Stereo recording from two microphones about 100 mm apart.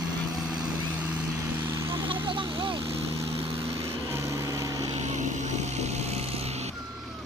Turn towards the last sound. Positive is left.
turn(degrees=-90)